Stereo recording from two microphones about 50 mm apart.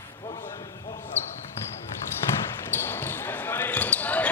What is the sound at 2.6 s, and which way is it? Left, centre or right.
Basketball bounce, left.